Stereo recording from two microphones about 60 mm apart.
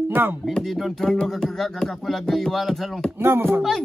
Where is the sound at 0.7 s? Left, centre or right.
Centre.